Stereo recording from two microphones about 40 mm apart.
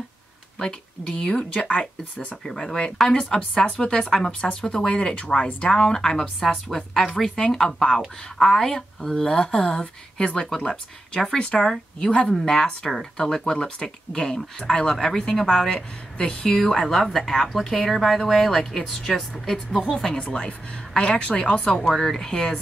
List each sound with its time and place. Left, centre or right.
0.6 s speech: left
2.4 s a woman's voice: centre
4.6 s speech: left
5.3 s a woman's voice: centre
5.7 s a woman's voice: centre
12.3 s a woman's voice: centre
20.3 s speech: left
21.9 s a woman's voice: centre